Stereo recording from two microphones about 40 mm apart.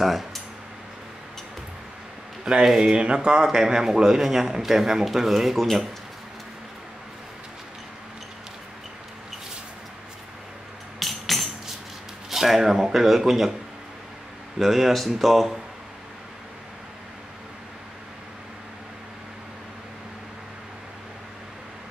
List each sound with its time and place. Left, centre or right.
0.0 s a sound: centre
2.4 s speech: centre
3.4 s speech: centre
11.0 s tambourine: centre
12.3 s speech: centre
14.6 s speech: centre